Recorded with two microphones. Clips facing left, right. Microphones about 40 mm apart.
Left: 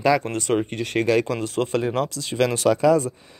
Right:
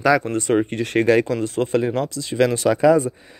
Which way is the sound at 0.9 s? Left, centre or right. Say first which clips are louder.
Right 4 dB; right.